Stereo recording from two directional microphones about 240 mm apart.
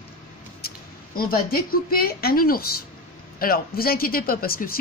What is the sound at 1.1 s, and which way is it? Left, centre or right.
Speech, left.